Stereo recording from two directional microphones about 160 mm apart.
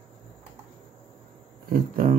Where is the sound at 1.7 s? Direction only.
65° right (ahead or behind).